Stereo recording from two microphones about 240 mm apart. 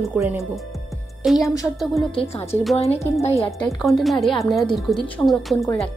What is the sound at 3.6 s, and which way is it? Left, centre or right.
Speech, centre.